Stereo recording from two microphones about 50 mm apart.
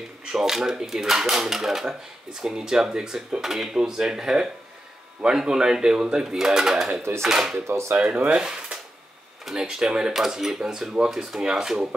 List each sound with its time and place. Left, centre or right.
0.2 s speech: centre
7.0 s speech: right
7.2 s speech: centre